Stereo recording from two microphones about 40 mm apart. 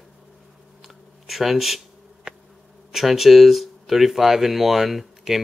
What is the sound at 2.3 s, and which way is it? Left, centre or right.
Insect, right.